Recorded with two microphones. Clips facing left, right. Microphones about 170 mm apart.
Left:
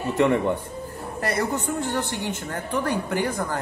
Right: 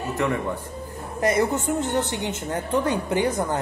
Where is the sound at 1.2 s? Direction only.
20° right (ahead or behind).